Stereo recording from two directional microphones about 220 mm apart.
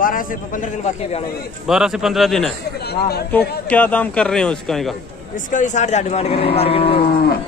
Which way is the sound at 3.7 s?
5° left (ahead or behind).